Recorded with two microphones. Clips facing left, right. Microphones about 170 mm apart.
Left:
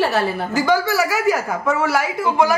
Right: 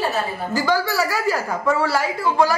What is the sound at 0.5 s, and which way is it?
A woman's voice, 20° left (ahead or behind).